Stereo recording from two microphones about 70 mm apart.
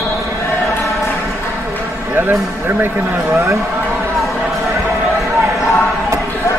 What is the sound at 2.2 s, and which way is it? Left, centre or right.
Speech, right.